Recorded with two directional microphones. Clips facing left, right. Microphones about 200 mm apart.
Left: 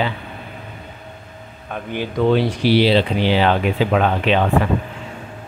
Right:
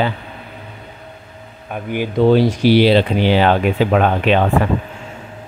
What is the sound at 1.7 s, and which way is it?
Speech, 10° right (ahead or behind).